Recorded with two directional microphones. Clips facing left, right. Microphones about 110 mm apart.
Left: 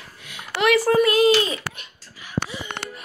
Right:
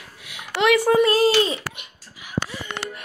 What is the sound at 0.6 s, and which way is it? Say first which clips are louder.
Speech: right 1 dB; 20° right (ahead or behind).